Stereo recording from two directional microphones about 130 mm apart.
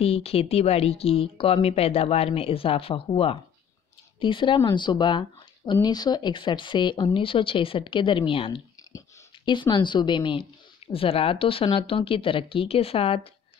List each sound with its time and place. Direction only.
0.0 s a woman's voice: 50° left (ahead or behind)